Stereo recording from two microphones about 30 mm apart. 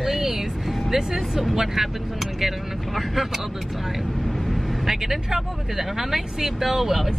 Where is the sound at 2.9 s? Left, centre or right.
Centre.